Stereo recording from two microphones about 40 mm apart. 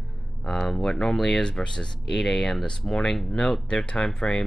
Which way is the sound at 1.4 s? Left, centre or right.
Centre.